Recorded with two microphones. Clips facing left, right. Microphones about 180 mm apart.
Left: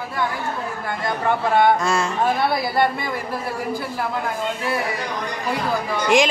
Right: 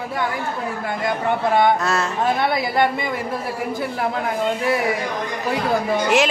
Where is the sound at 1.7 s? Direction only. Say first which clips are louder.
Even; 5° right (ahead or behind).